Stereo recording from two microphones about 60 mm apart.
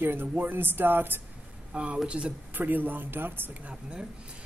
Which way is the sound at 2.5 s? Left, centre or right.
Right.